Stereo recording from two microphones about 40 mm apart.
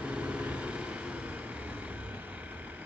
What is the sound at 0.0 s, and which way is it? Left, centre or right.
Vehicle, right.